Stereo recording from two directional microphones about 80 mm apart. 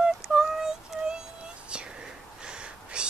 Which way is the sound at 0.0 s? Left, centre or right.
Centre.